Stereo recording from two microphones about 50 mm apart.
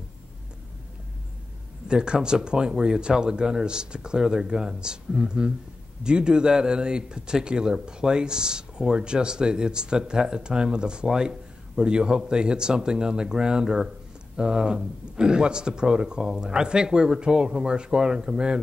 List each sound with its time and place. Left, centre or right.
1.9 s speech: centre